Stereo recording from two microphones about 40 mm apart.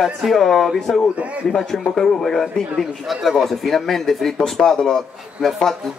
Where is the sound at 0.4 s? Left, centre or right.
Centre.